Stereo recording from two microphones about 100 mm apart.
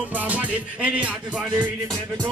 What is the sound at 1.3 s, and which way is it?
Music, centre (ahead or behind).